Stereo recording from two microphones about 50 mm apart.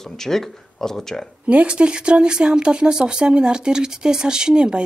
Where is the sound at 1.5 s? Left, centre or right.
Right.